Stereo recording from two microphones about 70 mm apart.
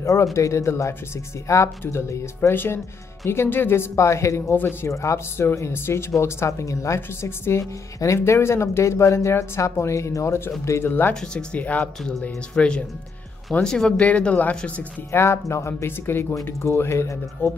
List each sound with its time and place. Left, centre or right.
0.0 s speech: left
2.5 s speech: left
10.9 s speech: left
11.1 s speech: centre
15.0 s speech: left
17.4 s speech: left